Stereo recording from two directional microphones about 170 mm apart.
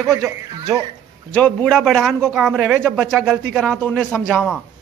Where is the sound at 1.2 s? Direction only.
5° left (ahead or behind).